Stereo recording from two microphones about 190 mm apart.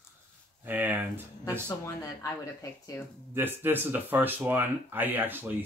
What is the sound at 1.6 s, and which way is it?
Speech, 15° left (ahead or behind).